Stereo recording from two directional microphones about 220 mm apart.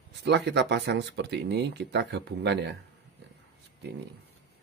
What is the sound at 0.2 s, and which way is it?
Speech, 50° right (ahead or behind).